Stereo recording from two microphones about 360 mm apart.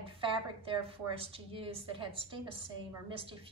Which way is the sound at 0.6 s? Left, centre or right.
Centre.